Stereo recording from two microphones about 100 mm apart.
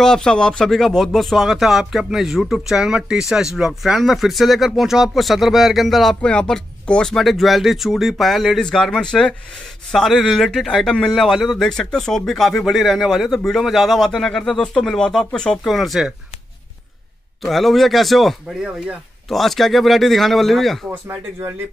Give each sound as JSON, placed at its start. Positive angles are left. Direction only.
{"t": 0.0, "sound": "speech", "side_deg": 5}
{"t": 17.4, "sound": "speech", "side_deg": 0}